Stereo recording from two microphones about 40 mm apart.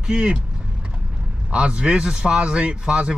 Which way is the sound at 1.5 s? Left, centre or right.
Right.